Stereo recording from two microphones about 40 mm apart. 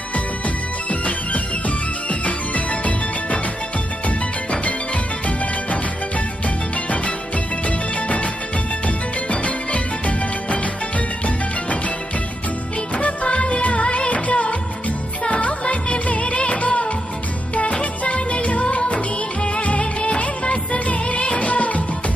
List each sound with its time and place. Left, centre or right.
0.8 s music: left
7.6 s music: left
12.9 s music: left
18.0 s music: left
19.8 s music of bollywood: left